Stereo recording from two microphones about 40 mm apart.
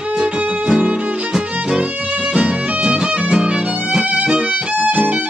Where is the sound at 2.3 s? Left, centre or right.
Right.